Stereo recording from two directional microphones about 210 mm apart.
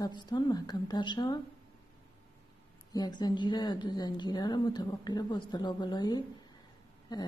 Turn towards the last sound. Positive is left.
turn(degrees=20)  # may be behind; listen again after turning